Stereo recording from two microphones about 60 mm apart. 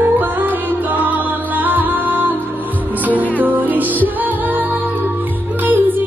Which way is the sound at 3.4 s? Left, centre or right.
Right.